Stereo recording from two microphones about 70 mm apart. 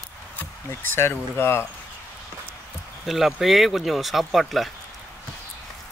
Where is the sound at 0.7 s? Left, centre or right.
Left.